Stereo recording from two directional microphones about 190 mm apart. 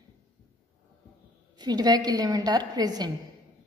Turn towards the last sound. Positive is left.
turn(degrees=-20)  # may be behind; listen again after turning